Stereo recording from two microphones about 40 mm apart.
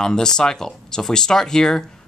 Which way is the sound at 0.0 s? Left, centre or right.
Centre.